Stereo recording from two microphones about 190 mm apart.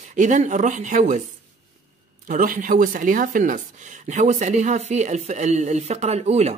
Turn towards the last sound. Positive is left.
turn(degrees=-35)  # may be behind; listen again after turning